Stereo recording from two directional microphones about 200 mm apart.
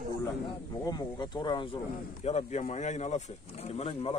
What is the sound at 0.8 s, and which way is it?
Speech, 20° left (ahead or behind).